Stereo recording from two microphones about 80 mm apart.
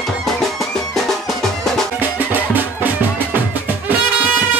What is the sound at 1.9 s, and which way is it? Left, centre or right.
Music, right.